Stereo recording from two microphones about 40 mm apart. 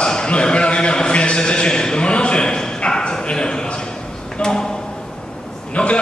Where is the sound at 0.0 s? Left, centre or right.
Left.